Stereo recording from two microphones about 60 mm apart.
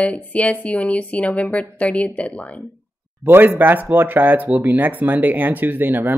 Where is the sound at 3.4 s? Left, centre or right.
Right.